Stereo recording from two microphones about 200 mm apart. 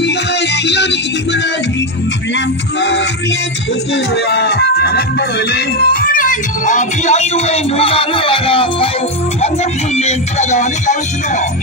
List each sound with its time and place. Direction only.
0.0 s music: 60° left (ahead or behind)
5.5 s speech: 50° left (ahead or behind); by 8.9 s 30° left (ahead or behind)
9.9 s speech: 35° left (ahead or behind)